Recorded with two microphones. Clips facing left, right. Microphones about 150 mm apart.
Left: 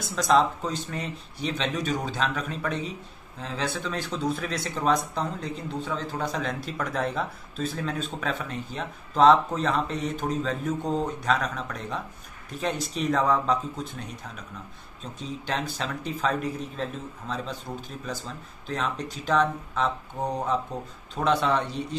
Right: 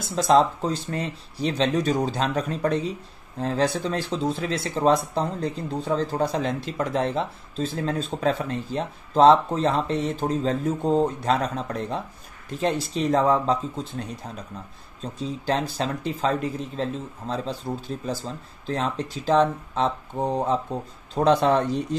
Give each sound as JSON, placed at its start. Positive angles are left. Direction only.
{"t": 0.1, "sound": "speech", "side_deg": -30}